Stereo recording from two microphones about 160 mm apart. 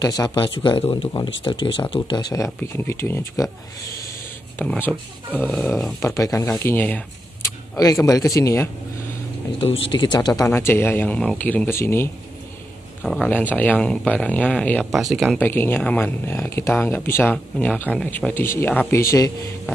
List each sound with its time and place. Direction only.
0.0 s speech: 25° left (ahead or behind)
4.6 s speech: 10° left (ahead or behind)
5.9 s speech: 20° left (ahead or behind)
9.6 s speech: 35° left (ahead or behind); by 12.1 s 15° left (ahead or behind)
13.0 s speech: 5° left (ahead or behind)
15.3 s speech: 10° left (ahead or behind)